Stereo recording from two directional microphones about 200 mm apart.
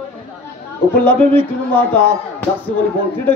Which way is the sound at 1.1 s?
10° left (ahead or behind).